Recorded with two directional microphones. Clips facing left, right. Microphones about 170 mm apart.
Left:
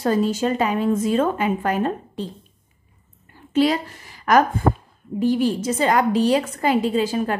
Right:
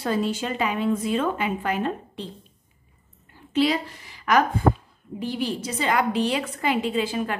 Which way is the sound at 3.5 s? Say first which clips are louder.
Left 3 dB; 45° left (ahead or behind).